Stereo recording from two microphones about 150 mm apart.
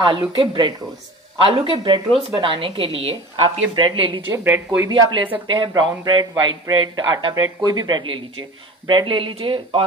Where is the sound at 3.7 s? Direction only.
30° right (ahead or behind).